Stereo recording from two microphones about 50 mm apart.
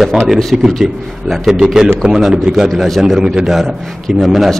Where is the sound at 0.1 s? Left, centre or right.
Centre.